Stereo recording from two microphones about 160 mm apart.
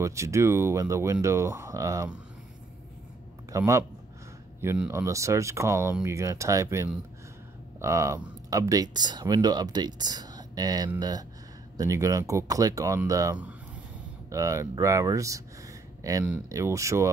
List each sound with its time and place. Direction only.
0.0 s speech: 20° right (ahead or behind)
3.5 s speech: 20° right (ahead or behind)